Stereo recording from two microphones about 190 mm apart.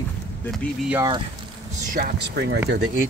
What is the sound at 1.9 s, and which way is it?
Speech, 55° right (ahead or behind).